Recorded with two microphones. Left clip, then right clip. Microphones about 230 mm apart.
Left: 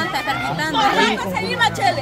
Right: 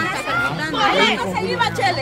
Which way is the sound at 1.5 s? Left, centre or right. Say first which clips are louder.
Left 2 dB; left.